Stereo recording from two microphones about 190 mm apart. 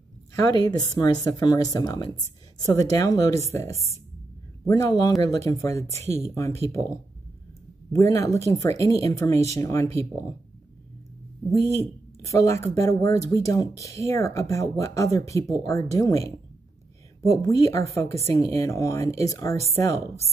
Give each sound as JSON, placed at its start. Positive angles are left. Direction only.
{"t": 0.4, "sound": "speech", "side_deg": 20}
{"t": 4.6, "sound": "speech", "side_deg": 20}
{"t": 11.7, "sound": "speech", "side_deg": 15}